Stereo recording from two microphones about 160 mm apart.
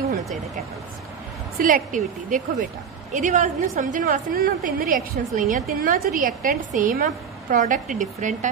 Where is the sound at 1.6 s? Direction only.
55° right (ahead or behind).